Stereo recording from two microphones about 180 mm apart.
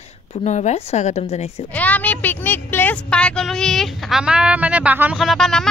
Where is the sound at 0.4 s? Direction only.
40° left (ahead or behind).